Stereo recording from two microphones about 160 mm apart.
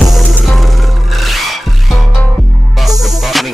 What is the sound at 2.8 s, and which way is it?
Music, centre (ahead or behind).